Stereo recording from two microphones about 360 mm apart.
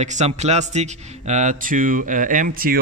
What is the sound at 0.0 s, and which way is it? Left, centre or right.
Speech, centre.